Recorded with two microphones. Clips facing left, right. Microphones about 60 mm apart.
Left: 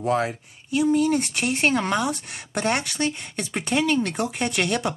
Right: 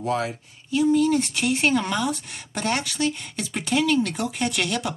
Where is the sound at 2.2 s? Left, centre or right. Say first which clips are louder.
Left 2 dB; centre.